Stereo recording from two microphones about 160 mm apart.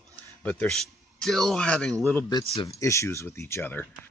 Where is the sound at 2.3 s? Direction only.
35° left (ahead or behind).